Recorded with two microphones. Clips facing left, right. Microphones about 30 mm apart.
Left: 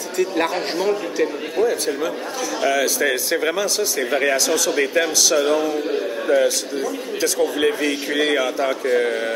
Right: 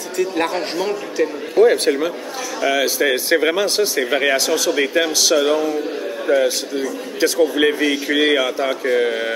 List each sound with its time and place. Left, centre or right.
0.2 s speech: centre
1.6 s a man's voice: right
2.7 s speech: centre
3.6 s speech: right
4.0 s a man's voice: centre
7.2 s a man's voice: centre